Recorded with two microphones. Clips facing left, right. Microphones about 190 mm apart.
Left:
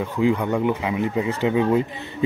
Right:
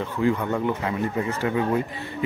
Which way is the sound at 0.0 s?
15° left (ahead or behind).